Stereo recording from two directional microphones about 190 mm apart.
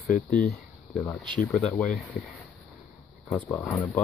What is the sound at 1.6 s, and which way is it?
Speech, 40° left (ahead or behind).